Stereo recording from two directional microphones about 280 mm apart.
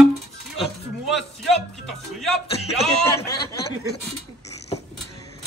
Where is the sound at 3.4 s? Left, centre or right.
Left.